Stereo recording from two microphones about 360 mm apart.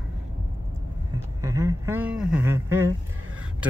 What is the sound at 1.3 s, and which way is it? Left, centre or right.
Speech, centre.